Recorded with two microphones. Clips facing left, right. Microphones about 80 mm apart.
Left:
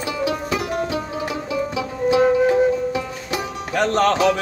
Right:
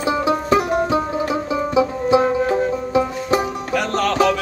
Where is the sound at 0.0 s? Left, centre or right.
Right.